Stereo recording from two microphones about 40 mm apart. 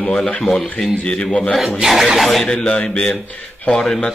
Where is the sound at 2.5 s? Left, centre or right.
Left.